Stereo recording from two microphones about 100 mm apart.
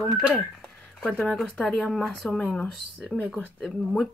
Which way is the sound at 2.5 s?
15° left (ahead or behind).